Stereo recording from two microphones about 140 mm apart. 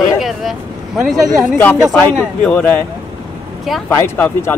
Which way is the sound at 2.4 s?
10° left (ahead or behind).